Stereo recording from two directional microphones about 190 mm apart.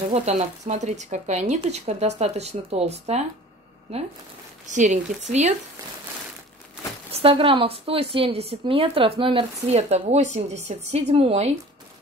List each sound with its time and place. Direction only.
0.1 s a woman's voice: 35° right (ahead or behind)
7.1 s a woman's voice: 30° right (ahead or behind)